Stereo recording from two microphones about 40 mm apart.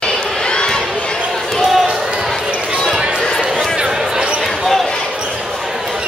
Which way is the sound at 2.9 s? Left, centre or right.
Right.